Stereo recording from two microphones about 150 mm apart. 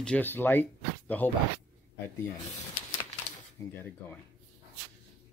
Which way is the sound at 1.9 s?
15° left (ahead or behind).